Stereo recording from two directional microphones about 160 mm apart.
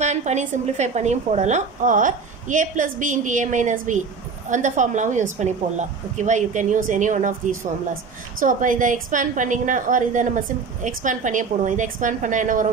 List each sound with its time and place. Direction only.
0.0 s a woman's voice: 45° right (ahead or behind)